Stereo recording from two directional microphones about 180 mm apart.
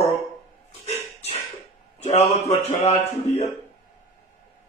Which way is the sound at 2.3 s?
35° left (ahead or behind).